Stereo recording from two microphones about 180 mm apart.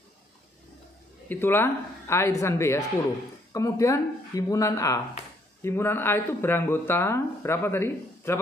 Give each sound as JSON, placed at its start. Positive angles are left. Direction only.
{"t": 1.3, "sound": "speech", "side_deg": 10}